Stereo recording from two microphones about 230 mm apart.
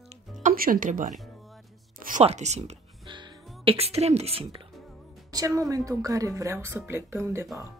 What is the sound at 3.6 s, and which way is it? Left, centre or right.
A woman's voice, right.